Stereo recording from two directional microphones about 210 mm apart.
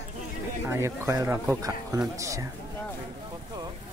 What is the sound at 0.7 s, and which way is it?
Speech, 10° right (ahead or behind).